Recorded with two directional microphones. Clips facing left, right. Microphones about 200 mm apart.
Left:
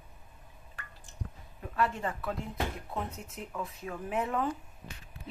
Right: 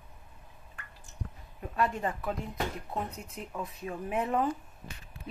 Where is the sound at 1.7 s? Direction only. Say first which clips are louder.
Right 1 dB; 15° right (ahead or behind).